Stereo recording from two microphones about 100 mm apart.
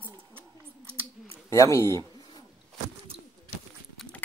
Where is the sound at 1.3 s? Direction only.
30° left (ahead or behind).